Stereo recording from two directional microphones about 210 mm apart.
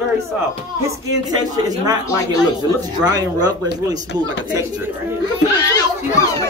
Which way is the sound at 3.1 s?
20° right (ahead or behind).